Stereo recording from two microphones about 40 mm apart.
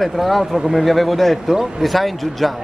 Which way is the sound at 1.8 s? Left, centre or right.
Centre.